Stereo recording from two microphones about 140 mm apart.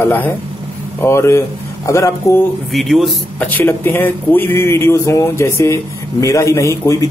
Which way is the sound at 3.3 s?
10° left (ahead or behind).